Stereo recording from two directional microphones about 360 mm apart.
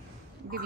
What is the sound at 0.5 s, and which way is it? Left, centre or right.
Speech, right.